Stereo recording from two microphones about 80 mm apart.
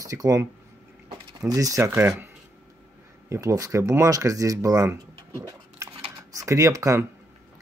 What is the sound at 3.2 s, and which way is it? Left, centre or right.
Speech, right.